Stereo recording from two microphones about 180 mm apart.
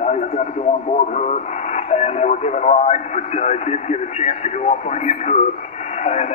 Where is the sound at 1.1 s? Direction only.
45° left (ahead or behind).